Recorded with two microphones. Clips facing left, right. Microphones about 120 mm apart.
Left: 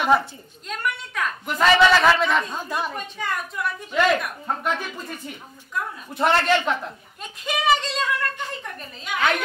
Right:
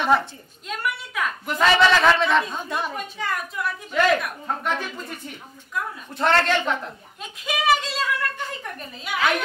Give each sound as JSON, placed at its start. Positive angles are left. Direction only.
{"t": 0.0, "sound": "a woman's voice", "side_deg": 5}
{"t": 6.1, "sound": "a woman's voice", "side_deg": 10}
{"t": 7.4, "sound": "a woman's voice", "side_deg": 0}